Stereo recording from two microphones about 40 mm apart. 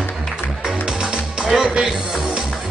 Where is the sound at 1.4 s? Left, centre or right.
Right.